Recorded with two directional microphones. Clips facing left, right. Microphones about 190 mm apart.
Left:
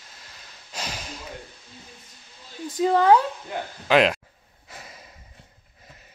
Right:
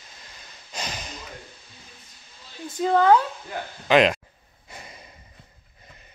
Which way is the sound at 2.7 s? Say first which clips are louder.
Even; 10° left (ahead or behind).